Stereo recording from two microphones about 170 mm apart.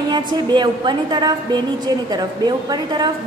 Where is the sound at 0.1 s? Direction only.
25° right (ahead or behind).